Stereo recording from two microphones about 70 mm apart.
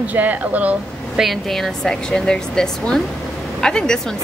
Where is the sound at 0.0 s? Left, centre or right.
Right.